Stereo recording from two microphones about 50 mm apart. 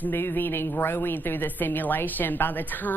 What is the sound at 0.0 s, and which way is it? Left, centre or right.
A woman's voice, left.